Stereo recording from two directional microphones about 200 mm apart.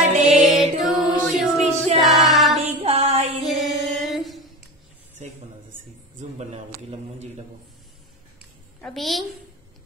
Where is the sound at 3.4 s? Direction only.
Centre (ahead or behind).